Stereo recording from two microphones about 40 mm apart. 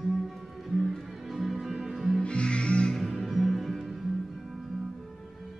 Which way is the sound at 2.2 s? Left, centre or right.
Left.